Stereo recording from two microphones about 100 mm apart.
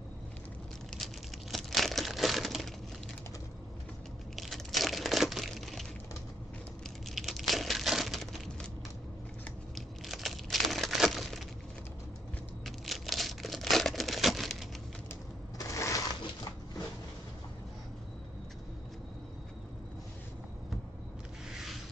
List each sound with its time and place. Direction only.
0.9 s crumpling: centre (ahead or behind)
4.4 s crumpling: centre (ahead or behind)
7.1 s a sound: centre (ahead or behind)
9.8 s crumpling: centre (ahead or behind)
12.6 s a sound: centre (ahead or behind)
15.5 s crushing: 35° left (ahead or behind)